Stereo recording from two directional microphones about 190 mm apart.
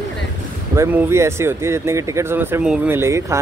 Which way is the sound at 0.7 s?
15° right (ahead or behind).